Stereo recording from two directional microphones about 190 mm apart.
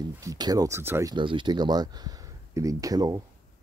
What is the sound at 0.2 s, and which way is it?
Speech, 20° right (ahead or behind).